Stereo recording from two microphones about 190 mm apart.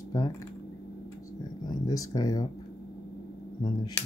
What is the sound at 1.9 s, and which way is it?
Speech, 20° left (ahead or behind).